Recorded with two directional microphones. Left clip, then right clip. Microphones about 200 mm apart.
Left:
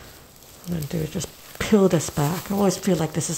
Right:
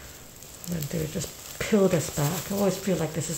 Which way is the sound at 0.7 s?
45° left (ahead or behind).